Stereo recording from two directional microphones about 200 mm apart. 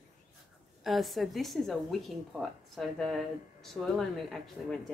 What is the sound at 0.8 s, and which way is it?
A woman's voice, centre (ahead or behind).